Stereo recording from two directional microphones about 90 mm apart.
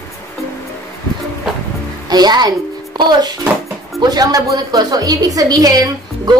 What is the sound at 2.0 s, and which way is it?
A child's voice, 50° right (ahead or behind).